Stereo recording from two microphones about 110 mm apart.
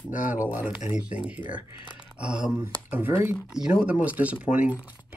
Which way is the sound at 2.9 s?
20° right (ahead or behind).